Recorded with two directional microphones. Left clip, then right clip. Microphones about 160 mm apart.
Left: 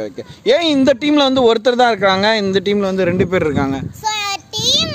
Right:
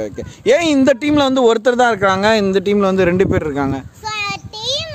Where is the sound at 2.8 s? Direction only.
20° right (ahead or behind); by 3.9 s centre (ahead or behind).